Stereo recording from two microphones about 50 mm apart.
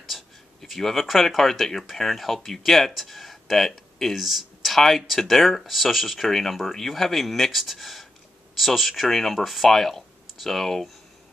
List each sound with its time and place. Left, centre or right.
0.0 s speech: centre